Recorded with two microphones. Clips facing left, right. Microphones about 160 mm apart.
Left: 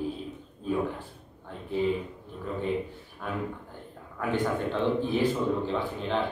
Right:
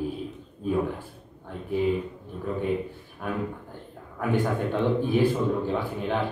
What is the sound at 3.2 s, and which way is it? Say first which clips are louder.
Speech: right 3 dB; 15° right (ahead or behind).